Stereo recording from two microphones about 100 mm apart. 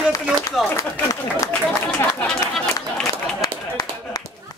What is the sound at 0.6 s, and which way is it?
Speech, centre (ahead or behind).